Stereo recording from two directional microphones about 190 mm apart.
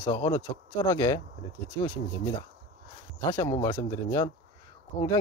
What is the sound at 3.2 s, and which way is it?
Speech, 20° left (ahead or behind).